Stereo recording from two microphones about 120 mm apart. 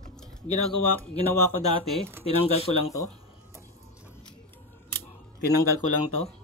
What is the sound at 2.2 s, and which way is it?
Speech, 60° left (ahead or behind).